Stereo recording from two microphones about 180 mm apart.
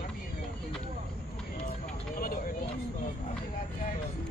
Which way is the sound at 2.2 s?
50° left (ahead or behind).